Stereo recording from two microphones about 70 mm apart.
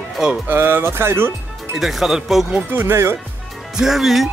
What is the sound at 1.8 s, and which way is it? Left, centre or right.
Speech, centre.